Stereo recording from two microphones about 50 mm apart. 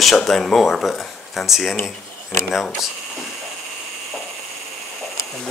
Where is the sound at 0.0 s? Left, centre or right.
Centre.